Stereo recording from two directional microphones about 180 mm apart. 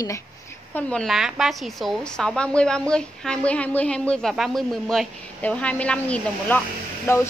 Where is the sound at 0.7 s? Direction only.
5° left (ahead or behind).